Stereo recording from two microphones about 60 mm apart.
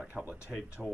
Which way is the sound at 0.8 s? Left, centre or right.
Centre.